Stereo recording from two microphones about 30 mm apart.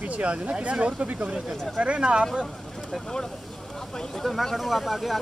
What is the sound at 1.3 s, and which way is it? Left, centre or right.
Speech, right.